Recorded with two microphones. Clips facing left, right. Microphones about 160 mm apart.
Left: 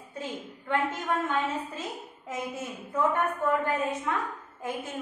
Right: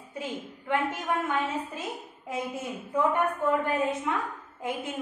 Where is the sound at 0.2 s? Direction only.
15° right (ahead or behind).